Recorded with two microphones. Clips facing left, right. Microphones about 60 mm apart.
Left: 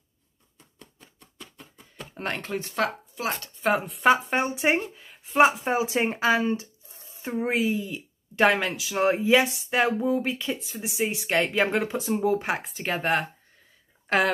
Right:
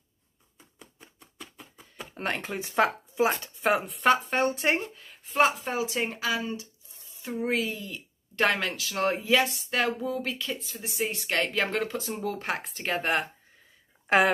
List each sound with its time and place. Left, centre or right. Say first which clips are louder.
0.6 s a sound: even; centre
2.7 s speech: right 5 dB; right
3.3 s speech: left 1 dB; centre
5.6 s speech: left 5 dB; left; by 14.3 s centre